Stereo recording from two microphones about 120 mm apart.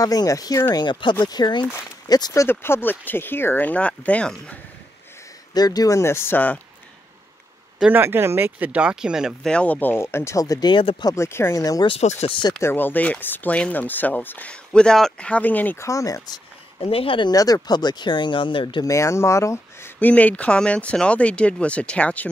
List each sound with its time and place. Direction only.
0.0 s speech: 30° left (ahead or behind)
0.7 s speech: 40° left (ahead or behind)
2.4 s speech: 20° left (ahead or behind)
5.5 s speech: 35° left (ahead or behind); by 6.6 s 15° left (ahead or behind)
7.8 s speech: 15° right (ahead or behind)
9.5 s speech: 10° left (ahead or behind); by 11.1 s 45° left (ahead or behind)
11.1 s speech: 20° left (ahead or behind)
12.0 s speech: 65° left (ahead or behind)
12.3 s speech: 40° left (ahead or behind)
12.6 s speech: 15° left (ahead or behind)
15.9 s speech: 30° left (ahead or behind)
16.8 s speech: 50° left (ahead or behind)
17.3 s speech: 30° left (ahead or behind)
18.9 s speech: 25° left (ahead or behind)